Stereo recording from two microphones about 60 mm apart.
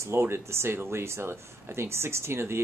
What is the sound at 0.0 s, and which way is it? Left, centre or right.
Speech, right.